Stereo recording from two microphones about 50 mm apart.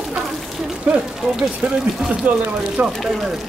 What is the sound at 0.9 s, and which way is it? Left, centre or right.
Speech, right.